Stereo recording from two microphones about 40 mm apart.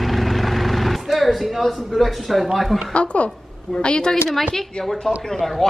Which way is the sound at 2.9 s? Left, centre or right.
Left.